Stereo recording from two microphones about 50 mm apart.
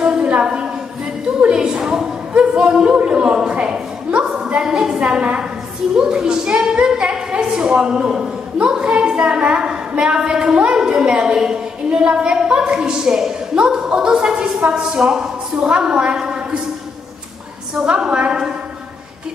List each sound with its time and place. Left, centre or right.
0.0 s a sound: centre
8.9 s a woman's voice: centre
17.8 s a woman's voice: centre